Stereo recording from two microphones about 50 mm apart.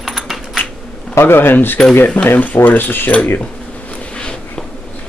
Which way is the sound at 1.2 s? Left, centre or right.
Left.